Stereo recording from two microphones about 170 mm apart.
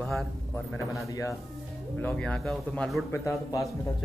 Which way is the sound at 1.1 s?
15° left (ahead or behind).